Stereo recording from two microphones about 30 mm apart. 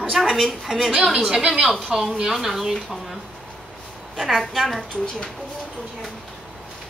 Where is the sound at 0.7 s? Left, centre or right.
Centre.